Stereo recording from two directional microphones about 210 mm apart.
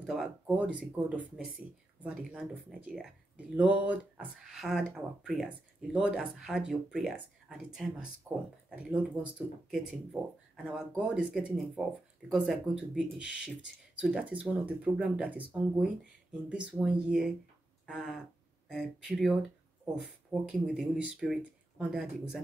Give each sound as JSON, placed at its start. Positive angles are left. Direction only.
{"t": 0.0, "sound": "speech", "side_deg": -5}
{"t": 10.1, "sound": "speech", "side_deg": -5}